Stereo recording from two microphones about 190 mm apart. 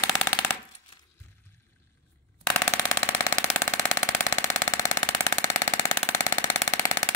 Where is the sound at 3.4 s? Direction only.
15° left (ahead or behind).